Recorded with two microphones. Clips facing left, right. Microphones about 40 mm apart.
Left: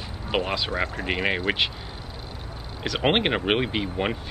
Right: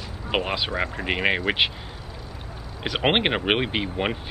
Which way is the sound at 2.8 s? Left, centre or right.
Centre.